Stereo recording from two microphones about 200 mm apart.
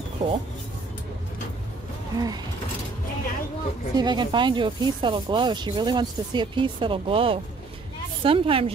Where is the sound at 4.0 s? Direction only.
20° right (ahead or behind).